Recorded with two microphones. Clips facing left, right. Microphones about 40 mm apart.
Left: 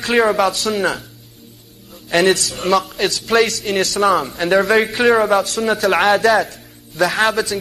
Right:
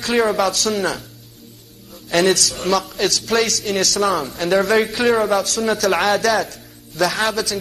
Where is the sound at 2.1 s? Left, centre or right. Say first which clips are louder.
Left 2 dB; left.